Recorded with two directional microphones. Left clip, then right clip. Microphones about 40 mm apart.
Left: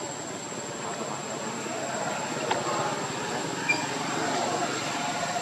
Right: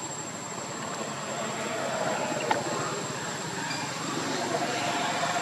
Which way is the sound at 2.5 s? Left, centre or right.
Centre.